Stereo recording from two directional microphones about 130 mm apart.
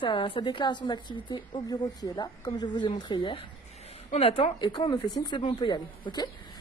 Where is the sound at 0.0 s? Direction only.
40° left (ahead or behind).